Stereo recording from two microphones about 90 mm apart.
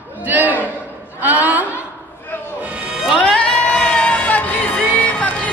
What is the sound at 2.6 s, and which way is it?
Music, 15° right (ahead or behind).